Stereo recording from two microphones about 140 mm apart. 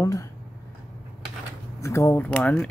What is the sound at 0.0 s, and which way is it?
Speech, 25° left (ahead or behind).